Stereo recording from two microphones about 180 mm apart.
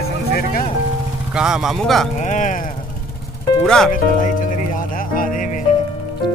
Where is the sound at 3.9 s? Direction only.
45° left (ahead or behind).